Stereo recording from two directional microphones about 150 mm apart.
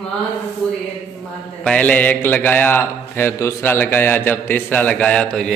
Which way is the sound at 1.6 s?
10° left (ahead or behind).